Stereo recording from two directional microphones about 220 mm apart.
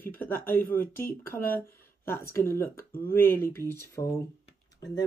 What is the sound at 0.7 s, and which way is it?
Speech, 10° left (ahead or behind).